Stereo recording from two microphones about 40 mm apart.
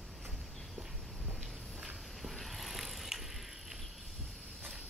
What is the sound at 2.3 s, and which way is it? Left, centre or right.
Bicycle, centre.